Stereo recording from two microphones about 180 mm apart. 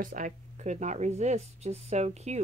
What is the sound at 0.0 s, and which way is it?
Speech, 45° right (ahead or behind).